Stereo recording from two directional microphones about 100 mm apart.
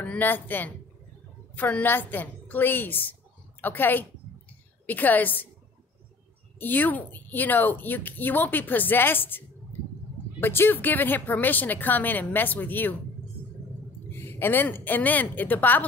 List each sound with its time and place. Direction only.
0.0 s a woman's voice: 15° left (ahead or behind)
6.6 s speech: 20° left (ahead or behind)
10.4 s speech: 20° left (ahead or behind)
14.1 s speech: 25° left (ahead or behind)